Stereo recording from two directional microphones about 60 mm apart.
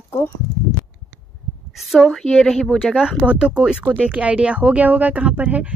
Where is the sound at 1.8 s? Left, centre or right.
Centre.